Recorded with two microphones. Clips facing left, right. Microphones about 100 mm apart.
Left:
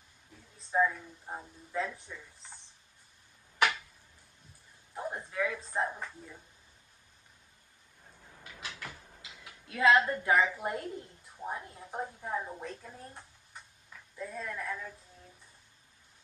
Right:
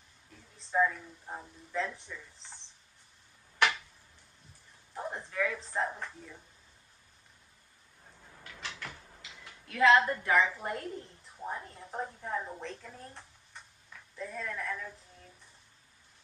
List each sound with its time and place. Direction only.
0.7 s a woman's voice: 5° left (ahead or behind)
4.9 s speech: 5° left (ahead or behind)
8.1 s cupboard open or close: centre (ahead or behind)
9.2 s tick-tock: 5° left (ahead or behind)
9.7 s a woman's voice: 20° left (ahead or behind); by 14.9 s 5° left (ahead or behind)